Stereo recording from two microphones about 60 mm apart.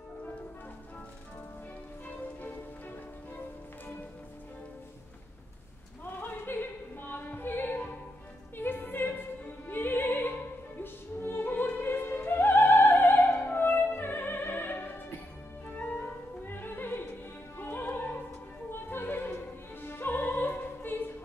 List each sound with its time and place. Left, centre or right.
2.0 s music: left
6.1 s music: left
8.5 s opera: left
15.7 s music: left
17.6 s opera: left
18.7 s music: left
19.9 s opera: left